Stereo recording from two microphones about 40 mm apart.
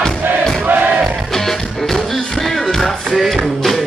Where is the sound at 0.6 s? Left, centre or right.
Right.